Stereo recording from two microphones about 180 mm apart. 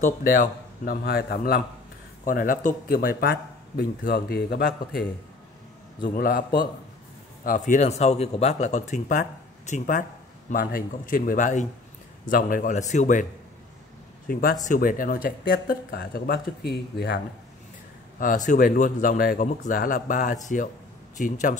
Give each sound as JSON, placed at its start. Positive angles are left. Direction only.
{"t": 0.0, "sound": "speech", "side_deg": 50}
{"t": 6.0, "sound": "speech", "side_deg": 55}
{"t": 18.2, "sound": "speech", "side_deg": 45}